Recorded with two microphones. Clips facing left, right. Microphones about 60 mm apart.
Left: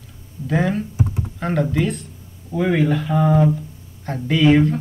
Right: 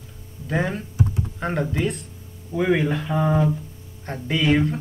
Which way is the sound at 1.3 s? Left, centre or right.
Centre.